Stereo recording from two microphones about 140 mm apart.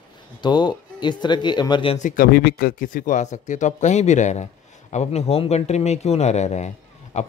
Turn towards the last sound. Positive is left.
turn(degrees=55)  # may be behind; listen again after turning